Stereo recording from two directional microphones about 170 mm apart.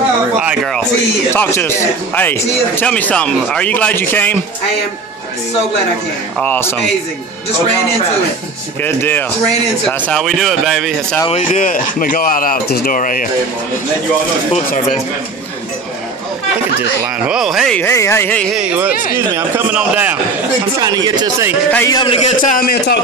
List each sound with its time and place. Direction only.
1.3 s speech: 15° left (ahead or behind)
6.4 s speech: 10° left (ahead or behind)
8.8 s speech: 10° left (ahead or behind)
11.2 s speech: 40° left (ahead or behind)
14.5 s speech: 40° left (ahead or behind)
17.3 s speech: 5° right (ahead or behind)
18.5 s a man's voice: 5° right (ahead or behind)
20.8 s speech: 25° right (ahead or behind)
21.8 s a man's voice: 25° left (ahead or behind)
22.4 s speech: 55° left (ahead or behind)